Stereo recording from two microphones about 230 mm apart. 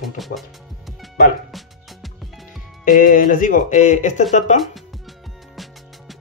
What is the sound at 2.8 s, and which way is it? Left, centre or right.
Speech, left.